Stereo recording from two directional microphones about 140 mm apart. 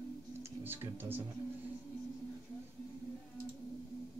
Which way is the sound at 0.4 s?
15° right (ahead or behind).